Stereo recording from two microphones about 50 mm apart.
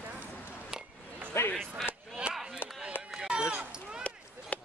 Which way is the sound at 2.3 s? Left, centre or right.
Centre.